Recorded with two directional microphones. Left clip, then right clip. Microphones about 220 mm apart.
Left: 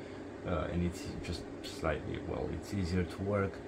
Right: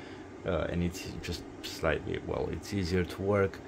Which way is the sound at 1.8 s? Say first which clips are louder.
Right 5 dB; 55° right (ahead or behind).